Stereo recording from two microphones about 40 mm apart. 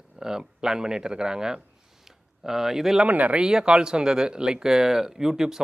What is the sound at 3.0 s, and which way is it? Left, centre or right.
Speech, right.